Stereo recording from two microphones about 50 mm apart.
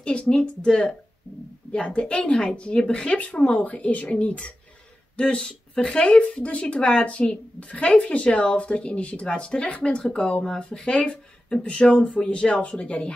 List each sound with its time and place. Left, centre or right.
0.0 s speech: left
12.1 s speech: left